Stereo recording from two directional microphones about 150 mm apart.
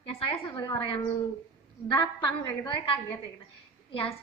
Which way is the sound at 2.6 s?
35° left (ahead or behind).